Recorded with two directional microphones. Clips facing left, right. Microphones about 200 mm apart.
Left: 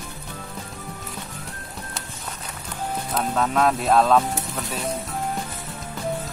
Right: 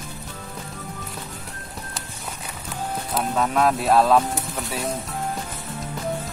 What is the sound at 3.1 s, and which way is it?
Speech, 5° right (ahead or behind).